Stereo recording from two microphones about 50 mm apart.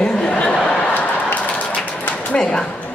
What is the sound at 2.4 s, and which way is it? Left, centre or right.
Speech, centre.